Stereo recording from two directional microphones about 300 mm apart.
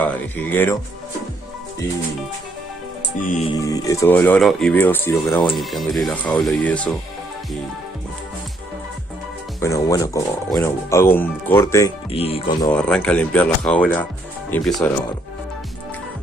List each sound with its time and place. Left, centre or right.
0.0 s speech: centre
3.3 s music: left
3.5 s speech: centre
9.6 s speech: centre
12.7 s speech: centre